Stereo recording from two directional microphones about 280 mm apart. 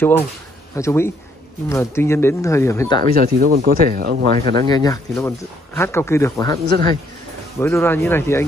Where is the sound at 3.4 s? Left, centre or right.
Right.